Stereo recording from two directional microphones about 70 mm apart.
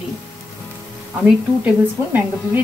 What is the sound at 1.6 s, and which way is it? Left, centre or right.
Speech, right.